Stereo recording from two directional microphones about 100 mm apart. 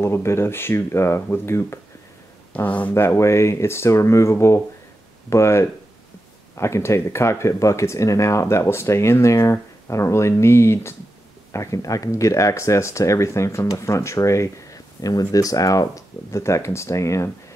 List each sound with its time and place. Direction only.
0.0 s speech: 25° left (ahead or behind)